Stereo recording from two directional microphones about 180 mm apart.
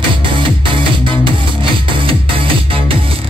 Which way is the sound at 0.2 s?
25° right (ahead or behind).